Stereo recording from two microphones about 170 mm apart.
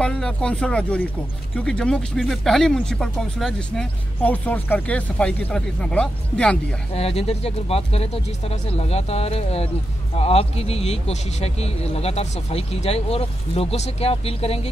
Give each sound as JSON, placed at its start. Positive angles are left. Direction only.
{"t": 0.0, "sound": "speech", "side_deg": 5}
{"t": 6.9, "sound": "speech", "side_deg": 35}